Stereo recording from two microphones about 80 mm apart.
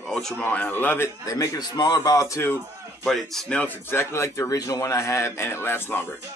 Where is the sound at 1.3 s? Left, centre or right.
Left.